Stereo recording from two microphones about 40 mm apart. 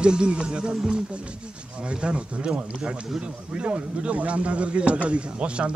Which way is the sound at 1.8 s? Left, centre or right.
Right.